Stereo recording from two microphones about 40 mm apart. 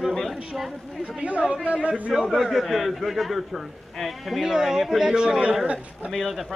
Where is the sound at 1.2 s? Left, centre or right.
Right.